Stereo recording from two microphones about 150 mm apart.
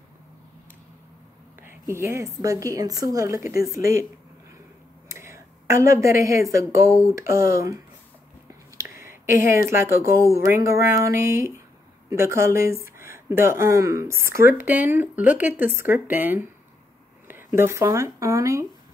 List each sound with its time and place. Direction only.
1.6 s a woman's voice: 15° right (ahead or behind)
5.0 s a woman's voice: 20° right (ahead or behind)
8.7 s a sound: 20° right (ahead or behind)
9.7 s a woman's voice: 20° right (ahead or behind)